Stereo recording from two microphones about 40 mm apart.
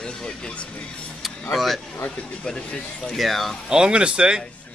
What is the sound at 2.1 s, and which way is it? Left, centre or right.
Speech, left.